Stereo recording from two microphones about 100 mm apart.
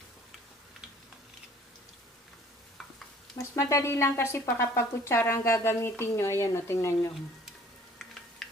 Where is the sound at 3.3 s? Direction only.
30° left (ahead or behind).